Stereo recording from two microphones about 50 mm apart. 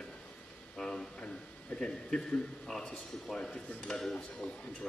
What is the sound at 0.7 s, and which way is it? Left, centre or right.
A man's voice, centre.